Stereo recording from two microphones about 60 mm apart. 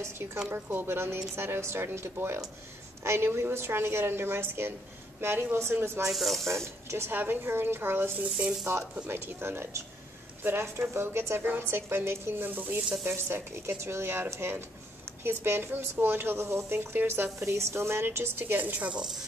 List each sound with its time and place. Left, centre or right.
0.0 s a woman's voice: right
6.0 s speech: centre
6.4 s a woman's voice: right
17.4 s a woman's voice: right